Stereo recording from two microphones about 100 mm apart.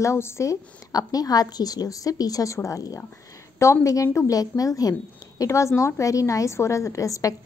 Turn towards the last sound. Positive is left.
turn(degrees=35)  # may be behind; listen again after turning